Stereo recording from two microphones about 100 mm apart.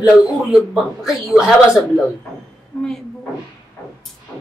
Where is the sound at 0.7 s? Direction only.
Centre (ahead or behind).